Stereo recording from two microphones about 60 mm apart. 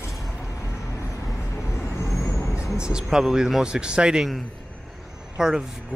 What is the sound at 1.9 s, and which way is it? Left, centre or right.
Vehicle, left.